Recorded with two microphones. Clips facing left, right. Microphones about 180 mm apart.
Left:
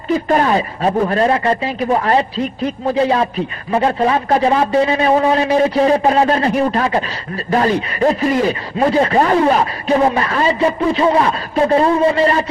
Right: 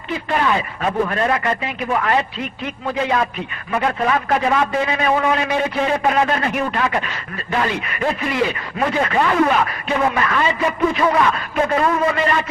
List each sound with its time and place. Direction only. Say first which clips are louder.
0.1 s speech: left 6 dB; 40° left (ahead or behind)